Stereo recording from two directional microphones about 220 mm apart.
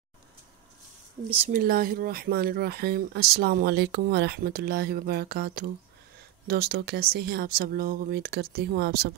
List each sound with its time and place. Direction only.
1.5 s speech: 40° right (ahead or behind)